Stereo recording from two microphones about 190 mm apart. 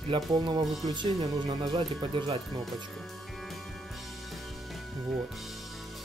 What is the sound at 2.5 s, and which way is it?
Speech, centre (ahead or behind).